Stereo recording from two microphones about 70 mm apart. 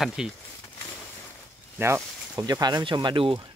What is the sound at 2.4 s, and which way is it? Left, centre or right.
Speech, right.